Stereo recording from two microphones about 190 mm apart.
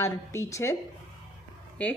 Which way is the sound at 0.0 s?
15° left (ahead or behind).